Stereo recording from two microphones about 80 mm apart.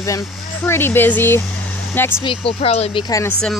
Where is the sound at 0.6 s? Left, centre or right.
Left.